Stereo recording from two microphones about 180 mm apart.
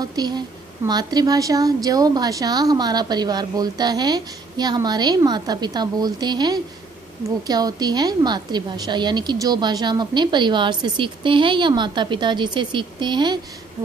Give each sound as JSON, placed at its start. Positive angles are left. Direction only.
{"t": 0.0, "sound": "a woman's voice", "side_deg": -20}